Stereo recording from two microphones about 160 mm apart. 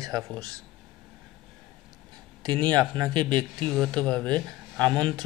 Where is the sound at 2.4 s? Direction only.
25° right (ahead or behind).